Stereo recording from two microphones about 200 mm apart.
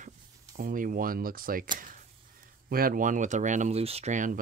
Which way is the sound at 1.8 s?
45° right (ahead or behind).